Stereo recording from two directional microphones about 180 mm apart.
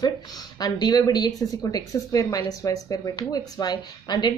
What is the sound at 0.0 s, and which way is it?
Speech, 20° left (ahead or behind).